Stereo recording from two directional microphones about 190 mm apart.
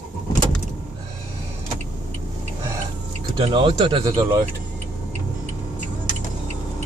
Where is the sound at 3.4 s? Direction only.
25° right (ahead or behind).